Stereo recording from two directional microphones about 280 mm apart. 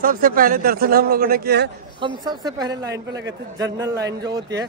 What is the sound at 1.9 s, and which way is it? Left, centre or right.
A woman's voice, centre.